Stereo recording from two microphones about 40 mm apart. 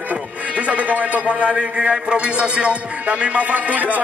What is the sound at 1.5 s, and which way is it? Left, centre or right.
Music, centre.